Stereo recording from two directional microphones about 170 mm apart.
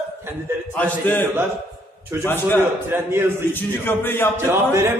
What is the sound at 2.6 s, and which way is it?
Speech, 15° right (ahead or behind).